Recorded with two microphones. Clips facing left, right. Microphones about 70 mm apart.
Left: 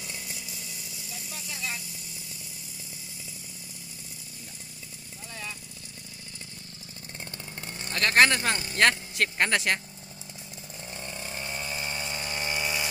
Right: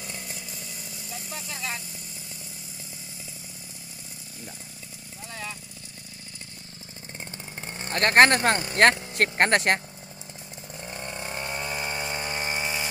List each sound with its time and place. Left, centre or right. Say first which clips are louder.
0.0 s chainsaw: right 2 dB; right
7.2 s speech: right 2 dB; right
10.8 s chainsaw: right 4 dB; right